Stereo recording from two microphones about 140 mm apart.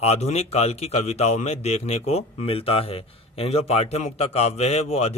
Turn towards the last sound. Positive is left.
turn(degrees=50)  # may be behind; listen again after turning